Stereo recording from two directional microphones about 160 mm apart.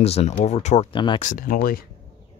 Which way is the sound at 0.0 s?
40° left (ahead or behind).